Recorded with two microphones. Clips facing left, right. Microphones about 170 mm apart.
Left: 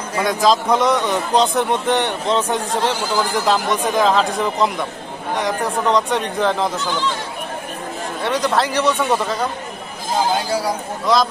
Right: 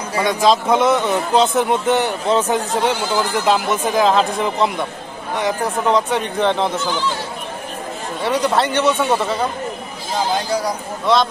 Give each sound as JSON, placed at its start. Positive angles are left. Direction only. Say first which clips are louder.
{"t": 0.1, "sound": "a man's voice", "louder": "right 1 dB", "side_deg": 0}
{"t": 8.2, "sound": "speech", "louder": "right 2 dB", "side_deg": -30}
{"t": 8.5, "sound": "a man's voice", "louder": "right 1 dB", "side_deg": 0}
{"t": 10.5, "sound": "a man's voice", "louder": "even", "side_deg": 5}